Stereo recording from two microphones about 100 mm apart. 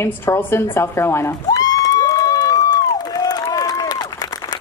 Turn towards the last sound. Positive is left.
turn(degrees=40)  # may be behind; listen again after turning